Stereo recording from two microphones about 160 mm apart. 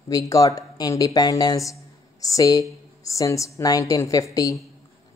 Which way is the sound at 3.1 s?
20° left (ahead or behind).